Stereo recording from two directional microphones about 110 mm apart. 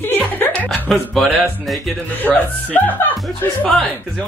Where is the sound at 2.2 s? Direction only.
15° left (ahead or behind).